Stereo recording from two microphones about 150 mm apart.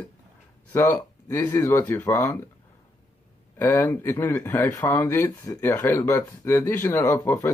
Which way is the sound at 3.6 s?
15° left (ahead or behind).